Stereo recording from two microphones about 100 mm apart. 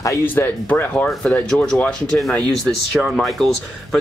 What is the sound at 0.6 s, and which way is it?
Speech, 15° left (ahead or behind).